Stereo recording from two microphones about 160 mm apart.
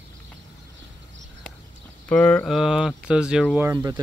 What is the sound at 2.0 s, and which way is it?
Speech, 10° left (ahead or behind).